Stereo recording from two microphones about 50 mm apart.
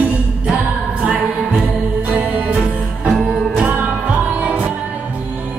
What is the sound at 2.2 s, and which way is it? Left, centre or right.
Music, right.